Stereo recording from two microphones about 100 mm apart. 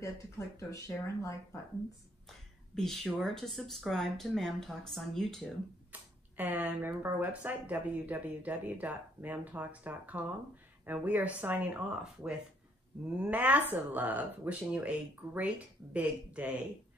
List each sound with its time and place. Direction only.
0.6 s speech: 30° left (ahead or behind)
2.7 s speech: 5° left (ahead or behind)
5.9 s a sound: 20° right (ahead or behind)
6.9 s speech: 20° right (ahead or behind)
13.2 s speech: 15° right (ahead or behind)